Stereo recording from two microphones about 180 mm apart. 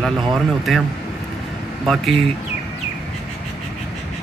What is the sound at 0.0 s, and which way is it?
Speech, centre (ahead or behind).